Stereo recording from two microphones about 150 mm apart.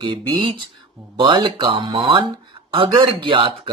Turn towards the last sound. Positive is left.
turn(degrees=-35)  # may be behind; listen again after turning